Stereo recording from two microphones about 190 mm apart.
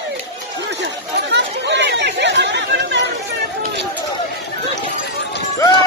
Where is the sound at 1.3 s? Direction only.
70° right (ahead or behind).